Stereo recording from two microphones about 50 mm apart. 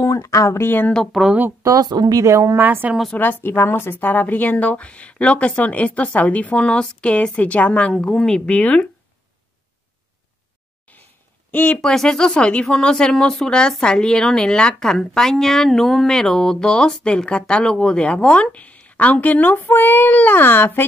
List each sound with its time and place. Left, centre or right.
0.0 s speech: left
1.1 s speech: centre
2.2 s a woman's voice: right
2.5 s a woman's voice: right
3.2 s a woman's voice: left
7.9 s speech: centre
8.5 s a woman's voice: left
10.9 s a sound: left
11.5 s speech: left
11.8 s a woman's voice: centre; by 19.5 s left
19.5 s speech: left